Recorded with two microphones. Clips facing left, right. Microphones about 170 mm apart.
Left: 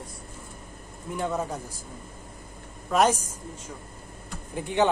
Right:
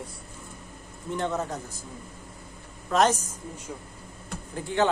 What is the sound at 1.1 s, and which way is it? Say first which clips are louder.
Speech: even; 10° left (ahead or behind).